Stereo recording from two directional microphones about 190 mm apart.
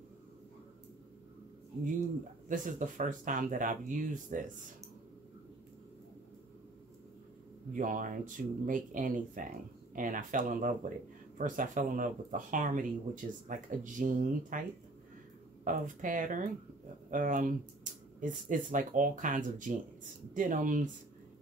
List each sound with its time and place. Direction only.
2.4 s speech: 40° right (ahead or behind)
7.7 s speech: 45° right (ahead or behind)
15.6 s speech: 45° right (ahead or behind)